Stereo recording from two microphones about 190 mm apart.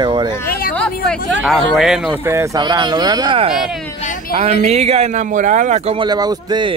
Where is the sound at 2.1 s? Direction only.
20° right (ahead or behind).